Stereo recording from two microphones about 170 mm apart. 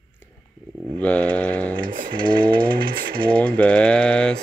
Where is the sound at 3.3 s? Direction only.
5° left (ahead or behind).